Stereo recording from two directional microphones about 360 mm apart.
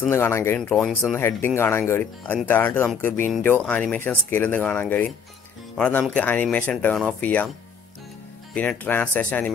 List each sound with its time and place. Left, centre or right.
0.0 s speech: centre
8.5 s speech: centre